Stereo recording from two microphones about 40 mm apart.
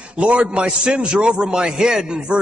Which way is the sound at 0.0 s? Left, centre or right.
Right.